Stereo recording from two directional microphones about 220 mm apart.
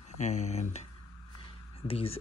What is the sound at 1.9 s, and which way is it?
Speech, 25° left (ahead or behind).